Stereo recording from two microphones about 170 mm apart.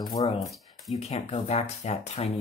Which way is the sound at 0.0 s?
25° left (ahead or behind).